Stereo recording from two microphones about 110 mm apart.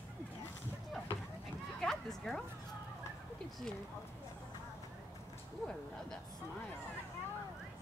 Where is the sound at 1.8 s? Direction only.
5° left (ahead or behind).